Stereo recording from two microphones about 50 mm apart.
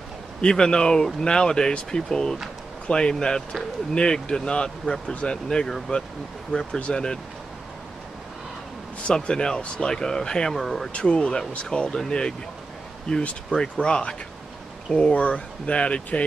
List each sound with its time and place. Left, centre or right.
0.4 s speech: centre
9.0 s speech: left; by 10.9 s centre
10.9 s speech: left